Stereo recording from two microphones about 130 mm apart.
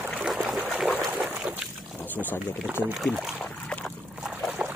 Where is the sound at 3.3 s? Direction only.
10° left (ahead or behind).